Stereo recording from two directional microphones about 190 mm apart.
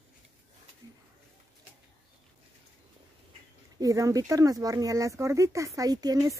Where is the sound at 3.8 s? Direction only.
15° right (ahead or behind).